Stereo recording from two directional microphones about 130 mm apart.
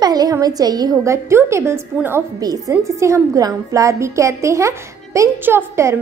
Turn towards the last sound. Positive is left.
turn(degrees=-20)  # may be behind; listen again after turning